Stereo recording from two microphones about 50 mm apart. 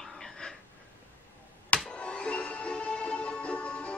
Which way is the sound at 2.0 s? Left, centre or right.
Left.